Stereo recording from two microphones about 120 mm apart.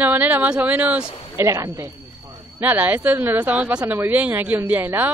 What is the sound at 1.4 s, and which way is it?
A woman's voice, 25° right (ahead or behind).